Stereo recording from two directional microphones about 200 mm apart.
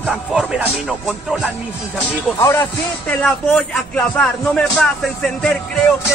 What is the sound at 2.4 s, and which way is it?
Speech, 10° left (ahead or behind).